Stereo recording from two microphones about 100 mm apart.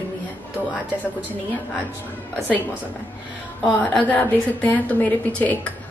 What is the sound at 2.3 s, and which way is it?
Speech, 15° left (ahead or behind).